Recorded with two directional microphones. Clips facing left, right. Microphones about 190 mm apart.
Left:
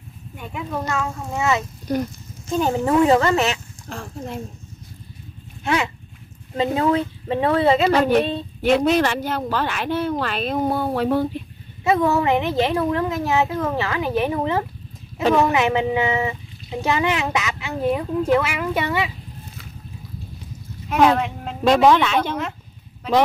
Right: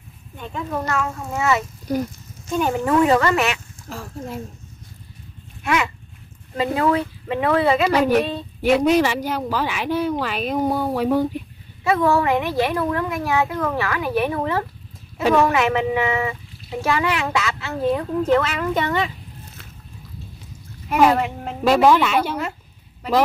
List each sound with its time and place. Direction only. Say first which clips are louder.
0.4 s a woman's voice: right 1 dB; 10° left (ahead or behind)
3.9 s speech: even; 5° right (ahead or behind)
5.6 s a woman's voice: even; 30° left (ahead or behind)
7.9 s speech: even; 10° right (ahead or behind)
8.2 s a woman's voice: left 1 dB; 25° left (ahead or behind)
8.6 s speech: right 1 dB; 10° right (ahead or behind)
11.8 s a woman's voice: even; 20° left (ahead or behind)
20.9 s a woman's voice: even; 5° right (ahead or behind)